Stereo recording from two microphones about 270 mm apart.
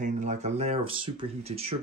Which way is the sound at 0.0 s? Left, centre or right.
Right.